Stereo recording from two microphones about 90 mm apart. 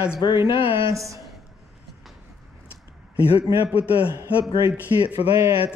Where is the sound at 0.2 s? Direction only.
55° left (ahead or behind).